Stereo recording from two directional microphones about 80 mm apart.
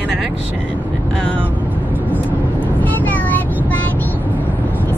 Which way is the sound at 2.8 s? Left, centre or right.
Left.